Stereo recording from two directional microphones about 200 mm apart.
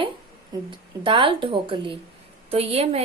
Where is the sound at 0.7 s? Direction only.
25° right (ahead or behind).